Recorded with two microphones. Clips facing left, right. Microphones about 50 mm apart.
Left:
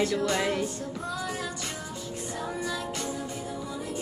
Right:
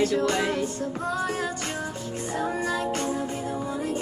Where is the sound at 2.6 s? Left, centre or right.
Right.